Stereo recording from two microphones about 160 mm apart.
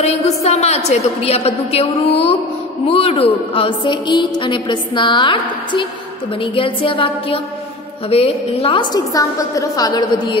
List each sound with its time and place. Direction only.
0.0 s a woman's voice: 40° left (ahead or behind); by 10.0 s 25° left (ahead or behind)